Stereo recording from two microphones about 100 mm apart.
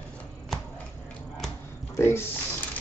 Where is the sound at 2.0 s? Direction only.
25° left (ahead or behind).